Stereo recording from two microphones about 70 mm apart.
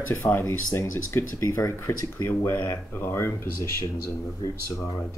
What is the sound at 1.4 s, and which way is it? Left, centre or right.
Speech, left.